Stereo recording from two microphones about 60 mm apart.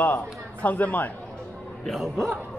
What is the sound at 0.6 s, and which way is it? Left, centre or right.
Speech, left.